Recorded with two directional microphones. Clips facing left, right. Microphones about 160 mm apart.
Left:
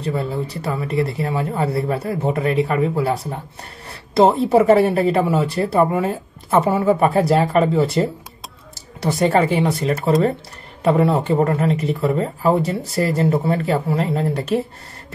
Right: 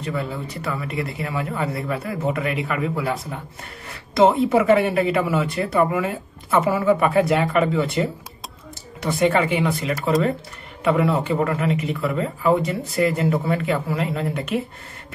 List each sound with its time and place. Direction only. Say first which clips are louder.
0.0 s speech: left 4 dB; 35° left (ahead or behind)